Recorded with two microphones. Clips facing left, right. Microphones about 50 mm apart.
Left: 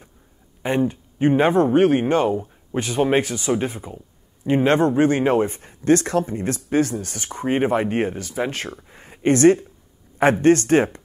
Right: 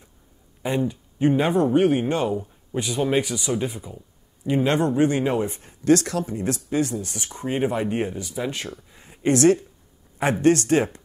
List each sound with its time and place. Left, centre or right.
0.6 s speech: left
8.9 s a sound: left
10.4 s speech: left